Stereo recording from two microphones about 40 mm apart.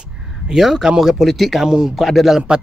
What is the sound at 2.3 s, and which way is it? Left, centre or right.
Speech, right.